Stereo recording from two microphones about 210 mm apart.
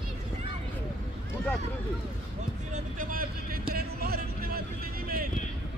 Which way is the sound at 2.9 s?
40° right (ahead or behind).